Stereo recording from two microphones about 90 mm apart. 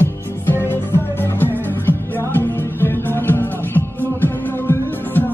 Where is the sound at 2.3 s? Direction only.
25° left (ahead or behind).